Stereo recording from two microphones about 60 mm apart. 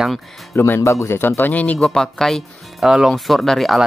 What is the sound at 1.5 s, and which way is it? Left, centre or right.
Speech, left.